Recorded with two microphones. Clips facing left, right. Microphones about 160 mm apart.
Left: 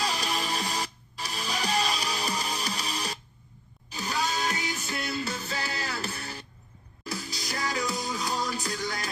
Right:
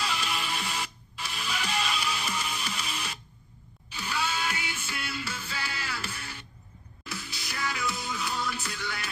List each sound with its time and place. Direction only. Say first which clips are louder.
0.0 s music: left 2 dB; 40° left (ahead or behind)